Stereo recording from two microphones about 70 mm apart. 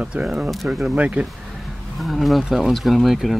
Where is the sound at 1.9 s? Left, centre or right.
Centre.